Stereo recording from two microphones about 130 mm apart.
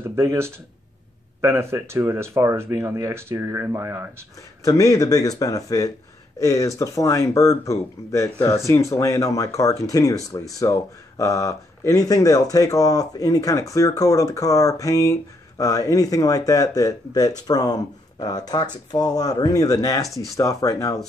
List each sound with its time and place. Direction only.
0.0 s speech: 20° right (ahead or behind)
4.6 s speech: 25° left (ahead or behind)